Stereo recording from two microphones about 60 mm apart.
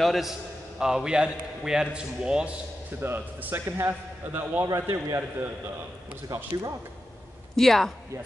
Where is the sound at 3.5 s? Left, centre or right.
Right.